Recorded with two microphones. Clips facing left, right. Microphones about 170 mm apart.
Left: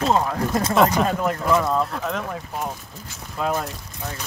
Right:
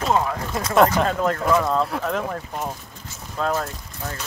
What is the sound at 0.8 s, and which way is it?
Speech, 15° left (ahead or behind).